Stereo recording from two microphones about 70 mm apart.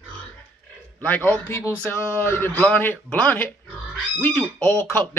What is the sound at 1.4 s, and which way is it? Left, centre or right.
Speech, left.